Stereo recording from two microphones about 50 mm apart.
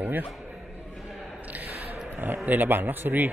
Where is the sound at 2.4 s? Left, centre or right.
Right.